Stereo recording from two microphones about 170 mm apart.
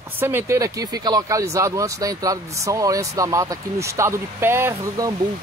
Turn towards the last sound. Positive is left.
turn(degrees=-20)  # may be behind; listen again after turning